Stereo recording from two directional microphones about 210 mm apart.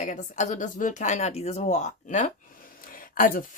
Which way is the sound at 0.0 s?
35° left (ahead or behind).